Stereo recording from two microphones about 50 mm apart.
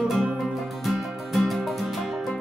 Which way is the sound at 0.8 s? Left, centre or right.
Centre.